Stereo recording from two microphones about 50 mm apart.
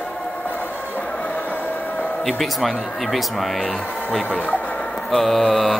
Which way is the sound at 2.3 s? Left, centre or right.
Centre.